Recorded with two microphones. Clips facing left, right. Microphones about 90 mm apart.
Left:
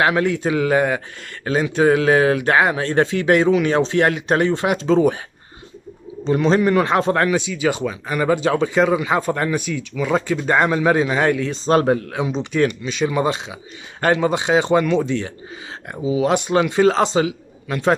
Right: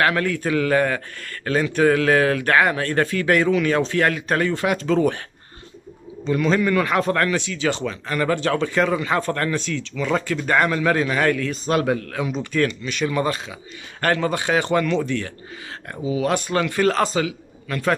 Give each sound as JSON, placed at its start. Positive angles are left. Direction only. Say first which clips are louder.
{"t": 0.0, "sound": "a man's voice", "louder": "left 3 dB", "side_deg": 20}
{"t": 6.2, "sound": "a man's voice", "louder": "left 3 dB", "side_deg": 30}
{"t": 7.2, "sound": "speech", "louder": "left 3 dB", "side_deg": 15}
{"t": 12.1, "sound": "a man's voice", "louder": "left 3 dB", "side_deg": 25}